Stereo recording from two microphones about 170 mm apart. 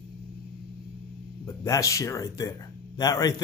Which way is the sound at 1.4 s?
20° left (ahead or behind).